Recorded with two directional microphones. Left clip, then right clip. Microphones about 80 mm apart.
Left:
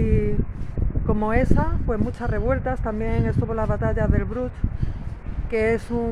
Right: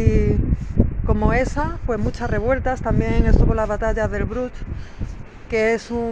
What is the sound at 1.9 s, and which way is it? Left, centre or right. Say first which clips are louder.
Speech: right 3 dB; left.